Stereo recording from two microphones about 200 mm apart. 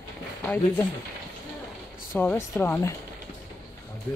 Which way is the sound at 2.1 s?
10° left (ahead or behind).